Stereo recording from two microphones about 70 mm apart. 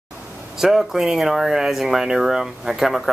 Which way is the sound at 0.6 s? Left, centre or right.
Centre.